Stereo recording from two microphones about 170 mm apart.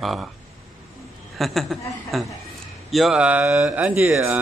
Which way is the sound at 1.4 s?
Centre (ahead or behind).